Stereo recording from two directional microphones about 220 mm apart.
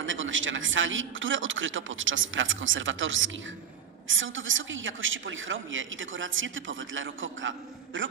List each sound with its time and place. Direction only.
0.0 s a woman's voice: 60° right (ahead or behind)